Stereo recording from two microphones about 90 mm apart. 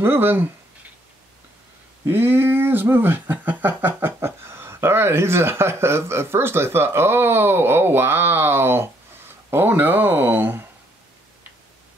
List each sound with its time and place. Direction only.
0.0 s speech: 25° right (ahead or behind)
2.0 s speech: 25° right (ahead or behind)